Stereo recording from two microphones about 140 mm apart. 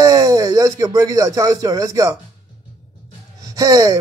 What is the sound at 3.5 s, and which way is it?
Speech, 25° right (ahead or behind).